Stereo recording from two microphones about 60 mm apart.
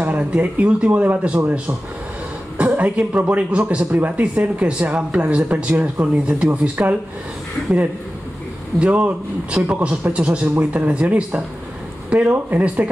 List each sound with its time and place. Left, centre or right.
0.0 s speech: right
8.7 s speech: centre
12.4 s speech: right